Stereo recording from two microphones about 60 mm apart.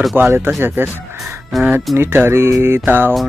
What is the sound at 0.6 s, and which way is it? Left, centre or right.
Fowl, right.